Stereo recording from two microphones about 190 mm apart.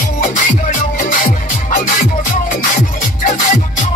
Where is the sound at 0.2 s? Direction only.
45° left (ahead or behind).